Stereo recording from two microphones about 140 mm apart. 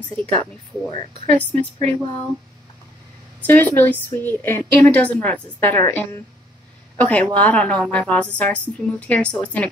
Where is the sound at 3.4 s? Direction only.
15° left (ahead or behind).